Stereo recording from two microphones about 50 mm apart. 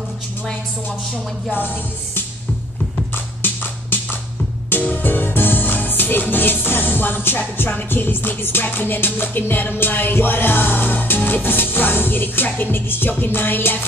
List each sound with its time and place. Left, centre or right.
3.4 s music: left